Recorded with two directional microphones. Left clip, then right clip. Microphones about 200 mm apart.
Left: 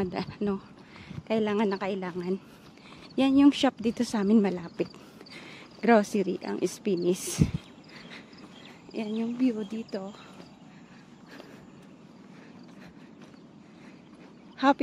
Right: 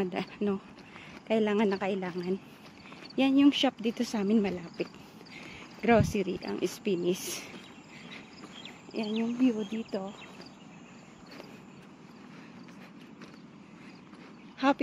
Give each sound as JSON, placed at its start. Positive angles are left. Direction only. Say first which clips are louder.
{"t": 0.0, "sound": "speech", "louder": "left 1 dB", "side_deg": 5}
{"t": 5.3, "sound": "cricket", "louder": "even", "side_deg": 15}
{"t": 6.1, "sound": "speech", "louder": "left 3 dB", "side_deg": 15}
{"t": 9.2, "sound": "speech", "louder": "even", "side_deg": -5}
{"t": 9.8, "sound": "speech", "louder": "even", "side_deg": 5}
{"t": 14.6, "sound": "speech", "louder": "left 4 dB", "side_deg": 15}